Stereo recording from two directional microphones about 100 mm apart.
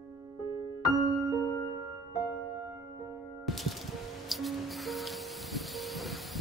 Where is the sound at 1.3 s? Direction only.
40° left (ahead or behind).